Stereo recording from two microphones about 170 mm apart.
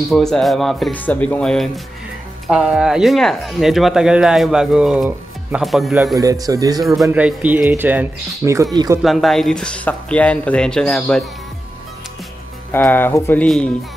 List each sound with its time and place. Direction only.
0.1 s speech: centre (ahead or behind)
6.1 s speech: 20° right (ahead or behind)
7.1 s speech: 10° right (ahead or behind)
9.0 s speech: centre (ahead or behind)
12.7 s speech: 10° left (ahead or behind)